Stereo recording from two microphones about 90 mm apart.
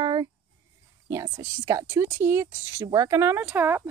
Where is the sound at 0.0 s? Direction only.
50° right (ahead or behind).